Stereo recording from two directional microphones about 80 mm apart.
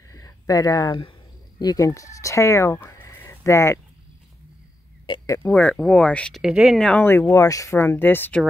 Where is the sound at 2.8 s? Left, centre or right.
Left.